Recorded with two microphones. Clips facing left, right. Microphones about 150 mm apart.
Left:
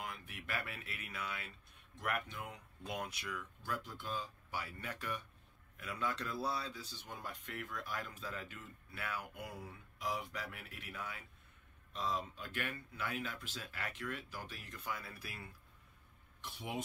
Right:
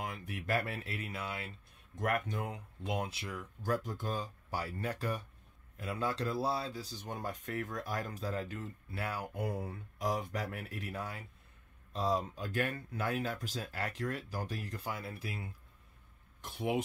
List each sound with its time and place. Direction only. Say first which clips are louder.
0.0 s speech: right 6 dB; 40° right (ahead or behind)
2.0 s speech: right 7 dB; 45° right (ahead or behind)
2.8 s speech: right 6 dB; 25° right (ahead or behind)
3.6 s speech: right 9 dB; 45° right (ahead or behind); by 15.5 s 25° right (ahead or behind)
16.3 s speech: right 9 dB; 50° right (ahead or behind)